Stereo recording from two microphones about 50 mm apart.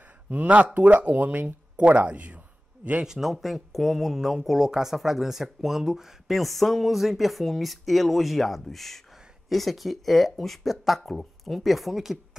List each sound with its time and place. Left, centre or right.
0.3 s speech: right
3.0 s speech: centre